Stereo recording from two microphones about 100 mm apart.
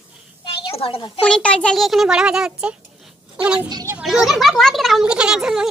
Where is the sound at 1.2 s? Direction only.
10° left (ahead or behind).